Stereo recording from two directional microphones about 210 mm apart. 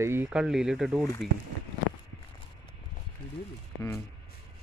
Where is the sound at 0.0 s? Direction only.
10° right (ahead or behind).